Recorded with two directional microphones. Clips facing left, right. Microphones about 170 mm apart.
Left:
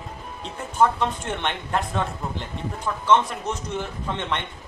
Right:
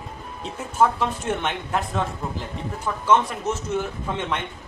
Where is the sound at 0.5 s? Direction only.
5° right (ahead or behind).